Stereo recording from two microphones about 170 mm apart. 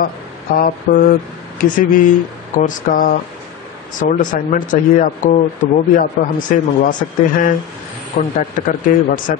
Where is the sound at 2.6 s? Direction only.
50° left (ahead or behind).